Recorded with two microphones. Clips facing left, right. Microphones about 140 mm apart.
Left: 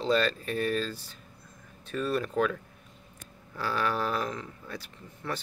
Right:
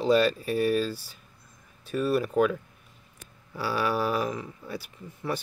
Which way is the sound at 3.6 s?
10° right (ahead or behind).